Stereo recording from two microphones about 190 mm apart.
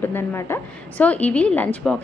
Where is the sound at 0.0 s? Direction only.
10° left (ahead or behind).